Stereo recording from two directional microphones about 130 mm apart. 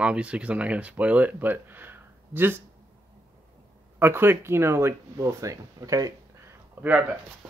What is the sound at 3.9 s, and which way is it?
Speech, 20° right (ahead or behind).